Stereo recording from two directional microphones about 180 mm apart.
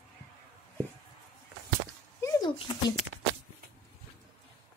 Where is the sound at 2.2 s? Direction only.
20° left (ahead or behind).